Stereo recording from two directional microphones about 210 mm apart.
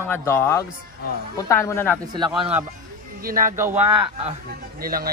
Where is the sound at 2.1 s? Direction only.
20° right (ahead or behind).